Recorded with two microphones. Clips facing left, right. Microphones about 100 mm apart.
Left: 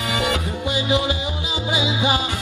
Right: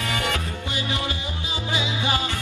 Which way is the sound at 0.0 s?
15° left (ahead or behind).